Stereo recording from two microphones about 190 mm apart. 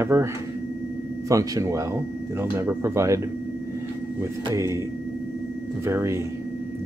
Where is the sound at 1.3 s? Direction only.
15° right (ahead or behind).